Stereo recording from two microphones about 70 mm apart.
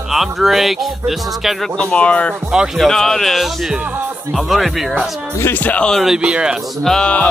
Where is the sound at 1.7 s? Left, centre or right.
Centre.